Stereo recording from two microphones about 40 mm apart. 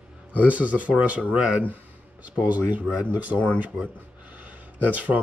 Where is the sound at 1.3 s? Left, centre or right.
Right.